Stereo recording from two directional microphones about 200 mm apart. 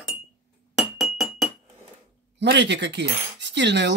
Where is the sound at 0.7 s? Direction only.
Centre (ahead or behind).